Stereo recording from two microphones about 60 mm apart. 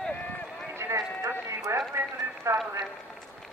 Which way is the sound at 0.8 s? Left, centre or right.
Right.